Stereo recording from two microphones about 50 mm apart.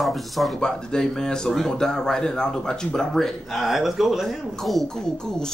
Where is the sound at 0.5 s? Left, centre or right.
Centre.